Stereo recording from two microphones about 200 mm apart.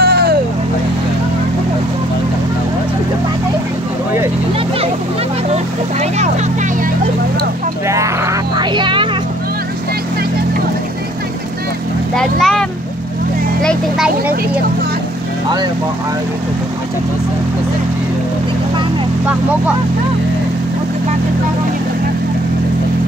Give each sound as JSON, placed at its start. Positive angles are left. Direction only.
{"t": 0.0, "sound": "vehicle", "side_deg": -50}
{"t": 5.5, "sound": "vehicle", "side_deg": -35}
{"t": 7.9, "sound": "vehicle", "side_deg": -15}
{"t": 12.2, "sound": "vehicle", "side_deg": 0}